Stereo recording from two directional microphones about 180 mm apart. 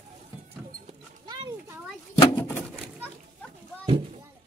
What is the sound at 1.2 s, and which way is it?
Oink, 25° right (ahead or behind).